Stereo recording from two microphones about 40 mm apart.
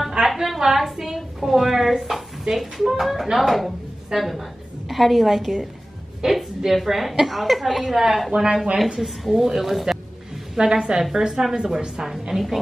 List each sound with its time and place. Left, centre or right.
0.2 s a sound: right
0.6 s a woman's voice: centre
10.6 s a woman's voice: centre
11.6 s a woman's voice: right
12.0 s a woman's voice: centre